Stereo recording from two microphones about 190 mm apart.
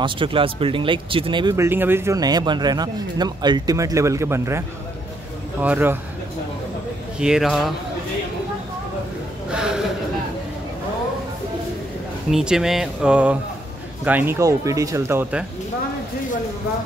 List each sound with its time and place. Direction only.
0.0 s speech: 25° right (ahead or behind)
1.5 s speech: 10° right (ahead or behind)
7.2 s speech: 5° right (ahead or behind)
9.5 s a sound: 5° right (ahead or behind)
12.3 s speech: centre (ahead or behind)